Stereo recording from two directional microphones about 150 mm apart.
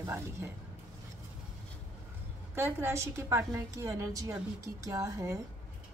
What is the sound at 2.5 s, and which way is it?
A woman's voice, 15° right (ahead or behind).